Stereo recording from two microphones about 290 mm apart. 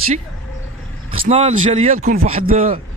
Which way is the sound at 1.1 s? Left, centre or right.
Right.